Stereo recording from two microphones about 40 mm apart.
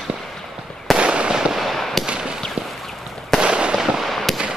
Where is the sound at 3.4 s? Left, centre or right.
Right.